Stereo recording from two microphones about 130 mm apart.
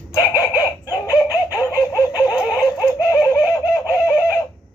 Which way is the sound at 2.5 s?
25° left (ahead or behind).